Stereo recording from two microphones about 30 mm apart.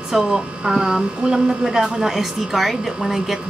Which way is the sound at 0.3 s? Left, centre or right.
Right.